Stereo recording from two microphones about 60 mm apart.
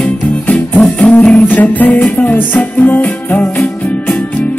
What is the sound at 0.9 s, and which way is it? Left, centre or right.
Music, left.